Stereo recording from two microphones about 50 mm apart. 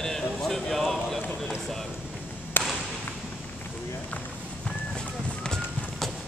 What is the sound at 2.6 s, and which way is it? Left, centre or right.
Whip, left.